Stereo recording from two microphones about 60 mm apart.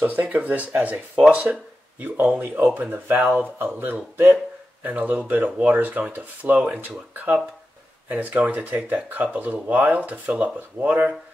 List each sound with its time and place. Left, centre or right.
0.0 s speech: right